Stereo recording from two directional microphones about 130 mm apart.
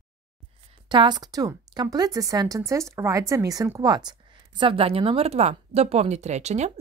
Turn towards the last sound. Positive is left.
turn(degrees=-60)  # may be behind; listen again after turning